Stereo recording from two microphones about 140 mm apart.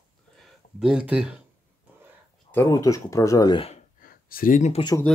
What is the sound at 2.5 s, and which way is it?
Speech, 20° left (ahead or behind).